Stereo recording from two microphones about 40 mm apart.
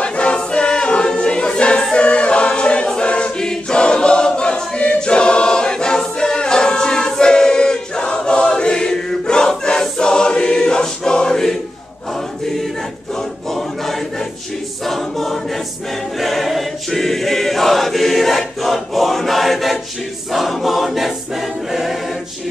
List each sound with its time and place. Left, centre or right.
0.0 s choir: left
13.5 s choir: centre